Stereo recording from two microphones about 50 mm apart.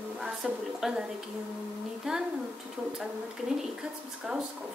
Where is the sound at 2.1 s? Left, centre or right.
Centre.